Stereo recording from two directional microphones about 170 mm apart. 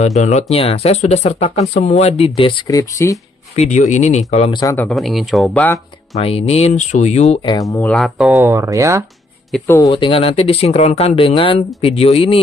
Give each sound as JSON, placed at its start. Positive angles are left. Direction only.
{"t": 0.0, "sound": "speech", "side_deg": 40}
{"t": 2.7, "sound": "speech", "side_deg": 20}
{"t": 3.5, "sound": "speech", "side_deg": 40}
{"t": 4.7, "sound": "speech", "side_deg": 5}
{"t": 6.1, "sound": "speech", "side_deg": 35}
{"t": 7.9, "sound": "speech", "side_deg": 0}
{"t": 8.3, "sound": "speech", "side_deg": -15}
{"t": 9.5, "sound": "speech", "side_deg": 5}
{"t": 9.8, "sound": "speech", "side_deg": 35}